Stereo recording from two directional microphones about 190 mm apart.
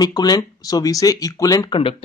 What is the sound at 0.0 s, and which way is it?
Speech, 20° left (ahead or behind).